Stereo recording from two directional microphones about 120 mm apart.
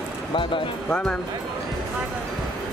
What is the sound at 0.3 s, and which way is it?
Speech, 45° left (ahead or behind).